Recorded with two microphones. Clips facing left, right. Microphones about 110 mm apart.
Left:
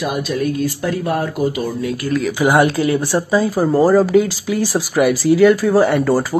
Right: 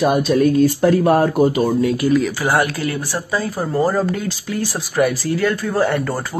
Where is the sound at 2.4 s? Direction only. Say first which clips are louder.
Left 5 dB; 15° left (ahead or behind).